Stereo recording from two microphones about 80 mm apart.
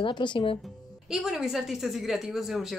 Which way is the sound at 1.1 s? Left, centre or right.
Centre.